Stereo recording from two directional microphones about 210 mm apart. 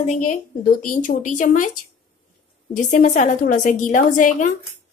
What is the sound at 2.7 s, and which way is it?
Speech, 35° left (ahead or behind).